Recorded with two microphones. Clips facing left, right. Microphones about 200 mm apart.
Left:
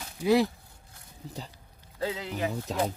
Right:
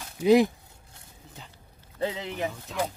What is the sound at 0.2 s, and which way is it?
Speech, 20° right (ahead or behind).